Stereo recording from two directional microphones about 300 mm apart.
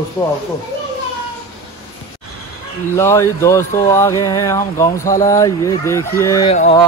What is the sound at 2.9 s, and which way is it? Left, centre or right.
Speech, centre.